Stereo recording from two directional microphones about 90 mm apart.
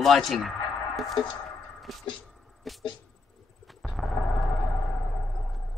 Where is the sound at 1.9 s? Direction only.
Centre (ahead or behind).